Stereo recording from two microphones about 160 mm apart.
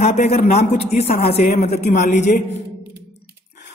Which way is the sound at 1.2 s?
75° left (ahead or behind).